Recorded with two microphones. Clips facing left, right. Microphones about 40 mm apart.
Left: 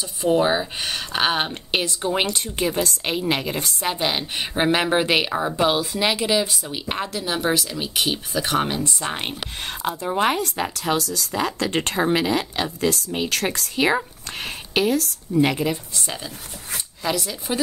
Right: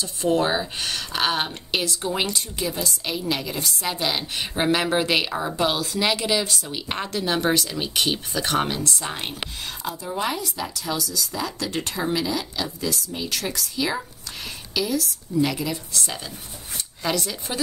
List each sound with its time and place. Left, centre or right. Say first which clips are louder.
0.0 s a woman's voice: left 2 dB; centre
2.3 s a woman's voice: left 4 dB; left
3.8 s a woman's voice: left 3 dB; left
9.8 s a woman's voice: left 6 dB; left
17.0 s speech: even; centre